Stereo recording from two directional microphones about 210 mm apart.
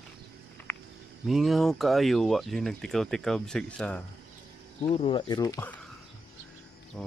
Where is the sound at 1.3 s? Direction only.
Centre (ahead or behind).